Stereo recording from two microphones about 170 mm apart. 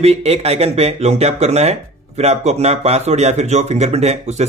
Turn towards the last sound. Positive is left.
turn(degrees=-40)  # may be behind; listen again after turning